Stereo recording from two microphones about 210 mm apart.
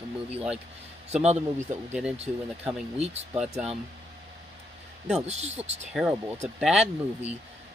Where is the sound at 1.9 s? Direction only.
5° right (ahead or behind).